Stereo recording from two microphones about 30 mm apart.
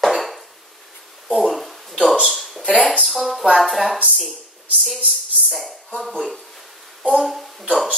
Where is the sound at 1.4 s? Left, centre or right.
Centre.